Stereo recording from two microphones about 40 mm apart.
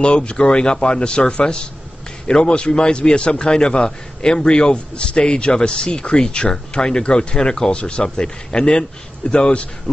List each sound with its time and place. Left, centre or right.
0.0 s a man's voice: left